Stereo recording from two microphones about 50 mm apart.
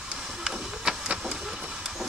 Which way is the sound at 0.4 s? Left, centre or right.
Centre.